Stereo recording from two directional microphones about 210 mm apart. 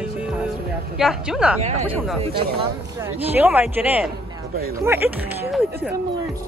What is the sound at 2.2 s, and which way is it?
Speech, 25° right (ahead or behind).